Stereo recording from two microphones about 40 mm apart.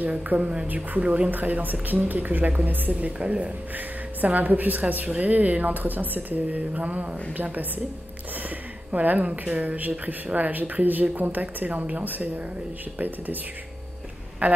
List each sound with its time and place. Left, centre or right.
0.0 s speech: right
0.4 s speech: right
1.3 s speech: right
3.7 s speech: right
8.9 s speech: right